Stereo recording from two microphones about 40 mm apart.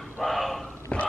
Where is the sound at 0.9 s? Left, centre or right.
Left.